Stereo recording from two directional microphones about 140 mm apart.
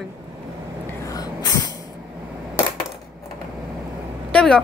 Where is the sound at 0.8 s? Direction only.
25° left (ahead or behind).